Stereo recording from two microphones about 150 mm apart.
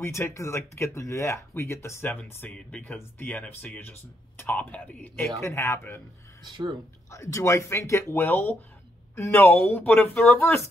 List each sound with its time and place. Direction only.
0.0 s speech: 15° left (ahead or behind)
6.5 s speech: 30° right (ahead or behind)
7.1 s speech: 20° left (ahead or behind)